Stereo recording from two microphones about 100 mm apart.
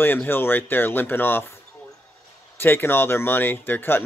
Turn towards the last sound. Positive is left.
turn(degrees=20)  # may be behind; listen again after turning